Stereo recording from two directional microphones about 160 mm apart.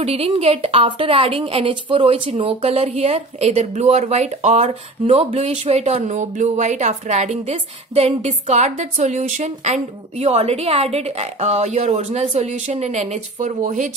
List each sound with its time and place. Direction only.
0.0 s a woman's voice: 40° right (ahead or behind)